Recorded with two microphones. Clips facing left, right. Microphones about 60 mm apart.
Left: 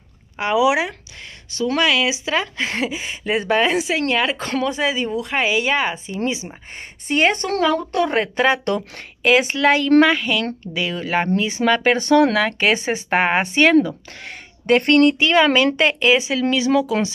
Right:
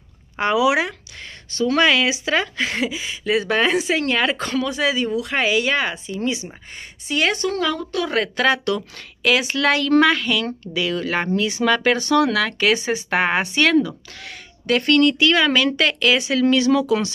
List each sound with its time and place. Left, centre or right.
0.4 s speech: centre
1.8 s speech: centre
2.0 s speech: centre
2.8 s speech: left
3.4 s speech: centre
4.5 s a woman's voice: left
7.1 s speech: left
8.2 s a woman's voice: left
12.4 s a woman's voice: left
13.2 s a woman's voice: left
14.8 s speech: left
15.0 s a woman's voice: left